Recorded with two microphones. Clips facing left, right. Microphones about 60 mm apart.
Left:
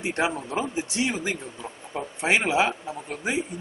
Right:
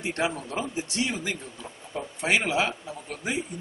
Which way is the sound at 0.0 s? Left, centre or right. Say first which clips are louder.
Left 2 dB; centre.